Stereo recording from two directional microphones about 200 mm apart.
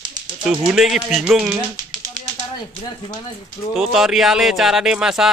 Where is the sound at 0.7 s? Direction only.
Centre (ahead or behind).